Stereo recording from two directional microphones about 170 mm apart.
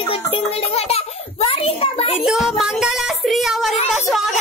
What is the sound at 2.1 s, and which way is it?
Speech, centre (ahead or behind).